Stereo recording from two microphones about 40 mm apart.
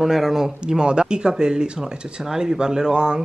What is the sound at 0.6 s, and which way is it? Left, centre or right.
Speech, right.